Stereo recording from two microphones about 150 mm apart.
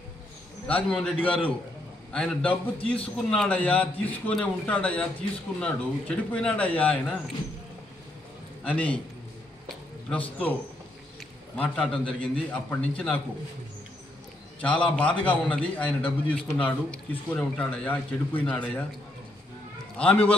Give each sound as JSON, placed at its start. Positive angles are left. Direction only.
{"t": 0.7, "sound": "a man's voice", "side_deg": 5}
{"t": 8.6, "sound": "a man's voice", "side_deg": 10}
{"t": 10.0, "sound": "a man's voice", "side_deg": 10}
{"t": 14.6, "sound": "a man's voice", "side_deg": 10}
{"t": 20.0, "sound": "a man's voice", "side_deg": 10}